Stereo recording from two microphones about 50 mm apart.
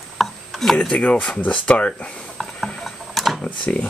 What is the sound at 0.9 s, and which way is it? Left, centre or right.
Speech, left.